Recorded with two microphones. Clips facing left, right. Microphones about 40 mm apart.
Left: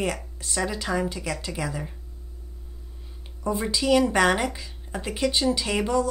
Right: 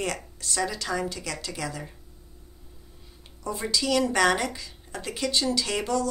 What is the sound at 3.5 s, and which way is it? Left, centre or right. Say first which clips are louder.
A woman's voice: left 4 dB; centre.